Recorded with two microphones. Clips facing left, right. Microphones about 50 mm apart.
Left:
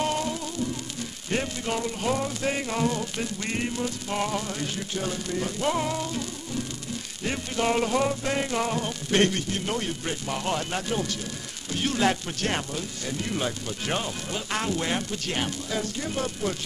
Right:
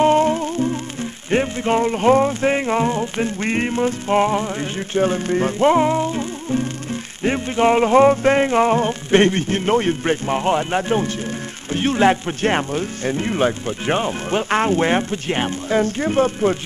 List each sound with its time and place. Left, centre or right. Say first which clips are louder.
0.0 s music: right 12 dB; right